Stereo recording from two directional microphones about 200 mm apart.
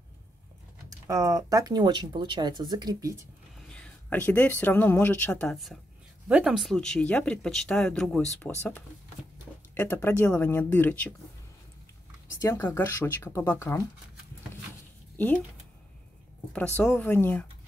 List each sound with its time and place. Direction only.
0.8 s speech: 15° right (ahead or behind)
3.5 s speech: 5° left (ahead or behind)
9.8 s speech: 10° left (ahead or behind)
12.4 s speech: 15° left (ahead or behind)
15.1 s speech: 10° left (ahead or behind)
16.5 s speech: 5° left (ahead or behind)